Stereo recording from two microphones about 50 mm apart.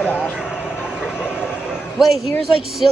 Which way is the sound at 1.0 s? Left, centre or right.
Centre.